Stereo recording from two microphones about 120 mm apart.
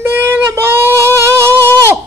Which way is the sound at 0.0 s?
20° right (ahead or behind).